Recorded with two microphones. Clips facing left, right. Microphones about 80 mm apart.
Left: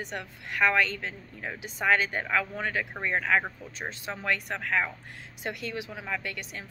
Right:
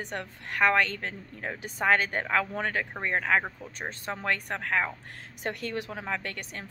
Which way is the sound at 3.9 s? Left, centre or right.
Right.